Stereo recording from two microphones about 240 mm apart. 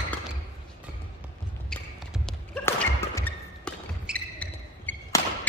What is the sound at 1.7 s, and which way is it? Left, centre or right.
Thump, centre.